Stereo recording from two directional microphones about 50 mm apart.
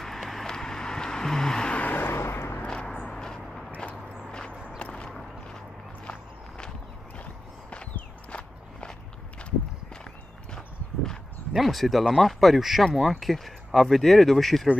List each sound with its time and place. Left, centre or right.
0.0 s vehicle: centre
1.7 s vehicle: left
2.0 s vehicle: left
2.6 s a sound: left
4.6 s walk: left
7.7 s walk: left
11.5 s speech: centre